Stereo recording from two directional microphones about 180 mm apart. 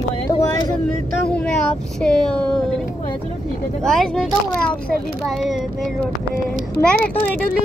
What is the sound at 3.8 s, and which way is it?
Speech, 5° left (ahead or behind).